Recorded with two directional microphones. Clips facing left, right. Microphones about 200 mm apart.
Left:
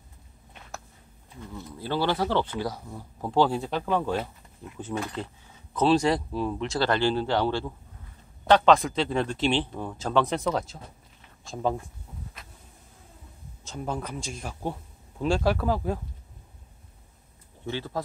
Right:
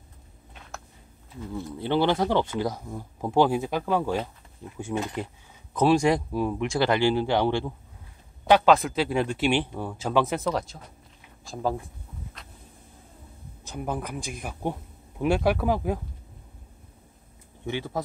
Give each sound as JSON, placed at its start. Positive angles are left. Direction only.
{"t": 1.5, "sound": "speech", "side_deg": -20}
{"t": 13.7, "sound": "speech", "side_deg": -10}
{"t": 17.6, "sound": "speech", "side_deg": -15}